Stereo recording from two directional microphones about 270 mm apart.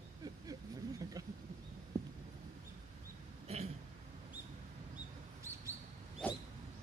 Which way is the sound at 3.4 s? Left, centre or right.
Right.